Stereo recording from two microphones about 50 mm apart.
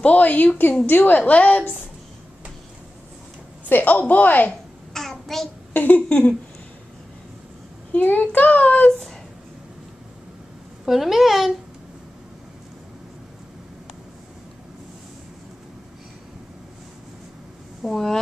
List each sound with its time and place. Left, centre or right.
0.0 s a child's voice: left
1.2 s a woman's voice: left
3.6 s a child's voice: left
4.9 s child singing: centre
5.7 s a woman's voice: left
7.9 s a child's voice: left
10.9 s a child's voice: centre
17.8 s a child's voice: centre